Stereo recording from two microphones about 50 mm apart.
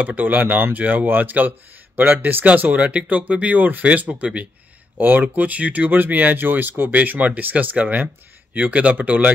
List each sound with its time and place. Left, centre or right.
0.0 s speech: right
5.0 s speech: right